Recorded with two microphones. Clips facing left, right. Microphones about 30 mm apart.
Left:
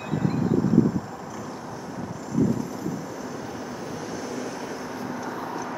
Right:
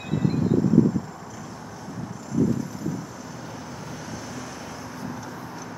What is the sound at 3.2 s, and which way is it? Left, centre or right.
Vehicle, centre.